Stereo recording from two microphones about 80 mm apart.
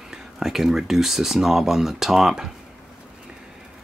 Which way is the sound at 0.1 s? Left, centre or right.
Centre.